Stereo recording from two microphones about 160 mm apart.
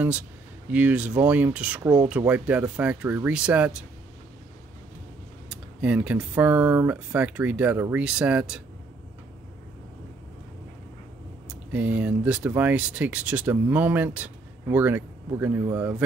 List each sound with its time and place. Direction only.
0.7 s speech: 10° right (ahead or behind)
5.5 s speech: 10° right (ahead or behind)
11.4 s speech: 10° right (ahead or behind)